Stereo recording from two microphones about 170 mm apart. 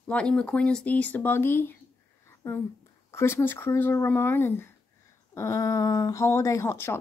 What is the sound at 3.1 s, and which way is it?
A woman's voice, 15° left (ahead or behind).